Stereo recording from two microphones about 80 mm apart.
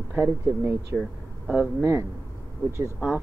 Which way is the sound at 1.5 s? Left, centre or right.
Centre.